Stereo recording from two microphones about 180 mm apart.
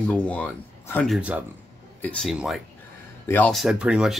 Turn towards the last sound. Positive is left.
turn(degrees=-5)  # may be behind; listen again after turning